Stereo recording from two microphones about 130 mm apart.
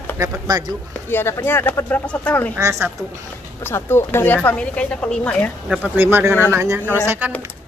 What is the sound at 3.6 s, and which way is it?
Speech, 20° left (ahead or behind).